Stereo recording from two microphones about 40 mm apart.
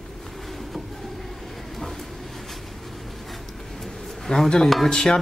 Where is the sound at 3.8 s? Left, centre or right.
Centre.